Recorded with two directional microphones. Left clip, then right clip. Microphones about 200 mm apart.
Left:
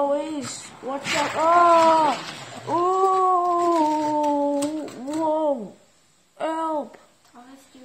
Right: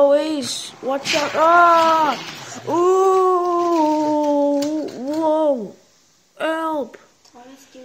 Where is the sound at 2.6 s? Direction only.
15° right (ahead or behind).